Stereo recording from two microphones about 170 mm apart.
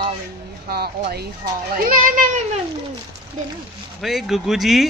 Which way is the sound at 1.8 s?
55° right (ahead or behind).